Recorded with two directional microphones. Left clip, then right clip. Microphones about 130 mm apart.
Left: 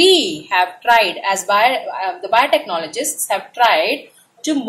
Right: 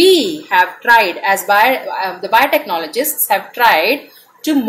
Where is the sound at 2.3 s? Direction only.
40° right (ahead or behind).